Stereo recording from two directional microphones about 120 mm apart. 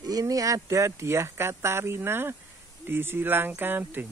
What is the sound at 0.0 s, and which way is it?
Speech, 30° right (ahead or behind).